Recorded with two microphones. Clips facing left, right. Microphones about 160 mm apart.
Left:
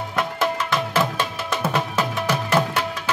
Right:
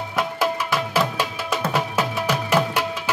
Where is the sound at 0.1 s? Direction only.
10° right (ahead or behind).